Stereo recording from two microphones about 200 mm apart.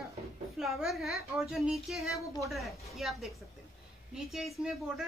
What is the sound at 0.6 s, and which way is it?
Speech, centre (ahead or behind).